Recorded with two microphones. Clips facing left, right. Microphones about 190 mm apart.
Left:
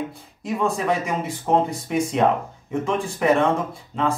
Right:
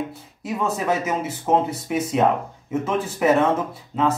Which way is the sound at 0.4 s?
5° right (ahead or behind).